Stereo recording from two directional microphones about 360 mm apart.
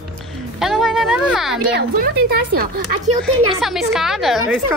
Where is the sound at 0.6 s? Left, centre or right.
Centre.